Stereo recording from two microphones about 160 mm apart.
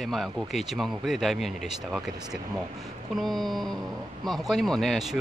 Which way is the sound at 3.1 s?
Centre (ahead or behind).